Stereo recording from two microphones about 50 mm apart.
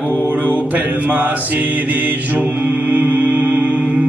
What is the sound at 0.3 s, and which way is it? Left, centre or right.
Mantra, right.